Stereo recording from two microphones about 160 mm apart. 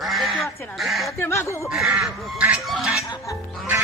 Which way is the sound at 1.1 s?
15° left (ahead or behind).